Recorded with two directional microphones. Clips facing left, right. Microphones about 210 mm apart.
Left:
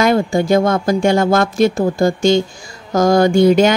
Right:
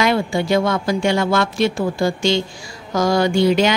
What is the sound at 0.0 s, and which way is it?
A woman's voice, 45° left (ahead or behind).